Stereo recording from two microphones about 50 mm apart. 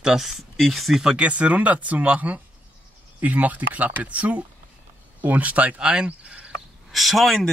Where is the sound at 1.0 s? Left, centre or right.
Right.